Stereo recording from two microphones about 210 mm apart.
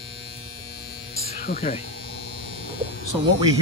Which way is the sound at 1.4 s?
45° left (ahead or behind).